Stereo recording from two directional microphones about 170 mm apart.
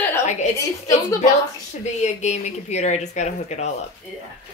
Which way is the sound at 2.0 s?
45° left (ahead or behind).